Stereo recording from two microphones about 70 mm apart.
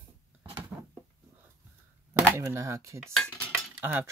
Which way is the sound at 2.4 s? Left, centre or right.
Right.